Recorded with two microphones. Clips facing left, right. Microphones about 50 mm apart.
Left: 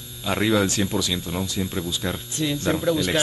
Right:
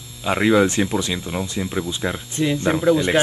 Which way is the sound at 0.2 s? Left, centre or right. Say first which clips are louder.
Right 5 dB; right.